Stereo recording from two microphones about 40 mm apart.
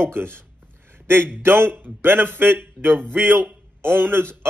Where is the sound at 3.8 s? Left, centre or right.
Right.